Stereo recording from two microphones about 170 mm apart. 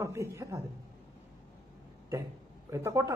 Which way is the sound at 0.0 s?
15° right (ahead or behind).